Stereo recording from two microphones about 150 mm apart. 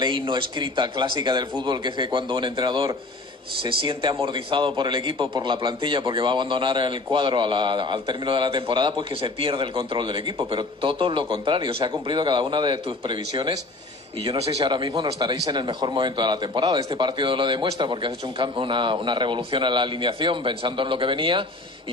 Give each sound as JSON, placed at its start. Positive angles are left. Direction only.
{"t": 0.0, "sound": "a man's voice", "side_deg": -30}
{"t": 14.2, "sound": "a man's voice", "side_deg": -40}